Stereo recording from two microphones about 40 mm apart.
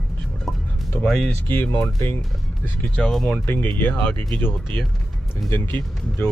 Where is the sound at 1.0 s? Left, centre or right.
Centre.